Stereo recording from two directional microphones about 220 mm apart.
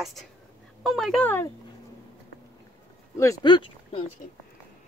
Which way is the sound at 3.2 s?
15° left (ahead or behind).